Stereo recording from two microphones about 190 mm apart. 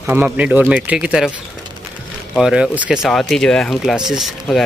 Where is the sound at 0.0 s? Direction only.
10° right (ahead or behind).